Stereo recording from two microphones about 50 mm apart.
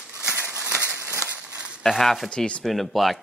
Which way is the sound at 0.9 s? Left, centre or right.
Right.